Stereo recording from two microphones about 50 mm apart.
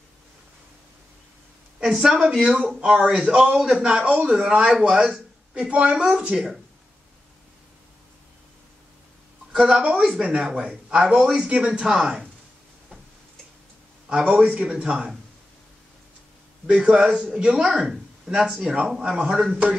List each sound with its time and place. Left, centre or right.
2.0 s a man's voice: centre
9.5 s a man's voice: centre
14.0 s a man's voice: centre
16.6 s speech: right